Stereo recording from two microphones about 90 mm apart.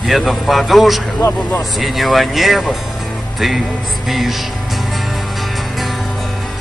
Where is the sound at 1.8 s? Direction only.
Centre (ahead or behind).